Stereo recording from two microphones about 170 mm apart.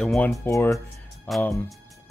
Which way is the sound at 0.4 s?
15° left (ahead or behind).